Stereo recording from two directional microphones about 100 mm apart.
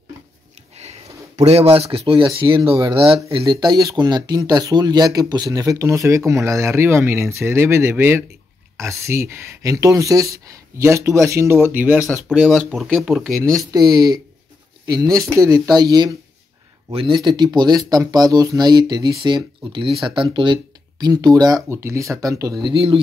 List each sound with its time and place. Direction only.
1.4 s speech: 90° right; by 3.2 s 60° right (ahead or behind)
3.4 s speech: 45° right (ahead or behind); by 12.0 s 20° right (ahead or behind)
12.0 s speech: 30° left (ahead or behind)
12.3 s speech: 5° right (ahead or behind)
13.3 s speech: 35° right (ahead or behind)
16.9 s speech: 55° right (ahead or behind)
21.6 s speech: 25° right (ahead or behind)
22.7 s speech: 65° right (ahead or behind)